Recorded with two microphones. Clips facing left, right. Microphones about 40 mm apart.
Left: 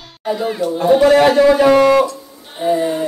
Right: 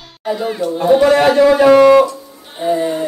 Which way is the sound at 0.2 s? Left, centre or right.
Centre.